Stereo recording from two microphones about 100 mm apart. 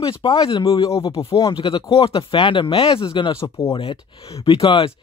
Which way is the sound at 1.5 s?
55° left (ahead or behind).